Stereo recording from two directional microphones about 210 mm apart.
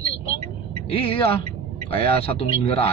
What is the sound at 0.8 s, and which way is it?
Speech, 25° left (ahead or behind).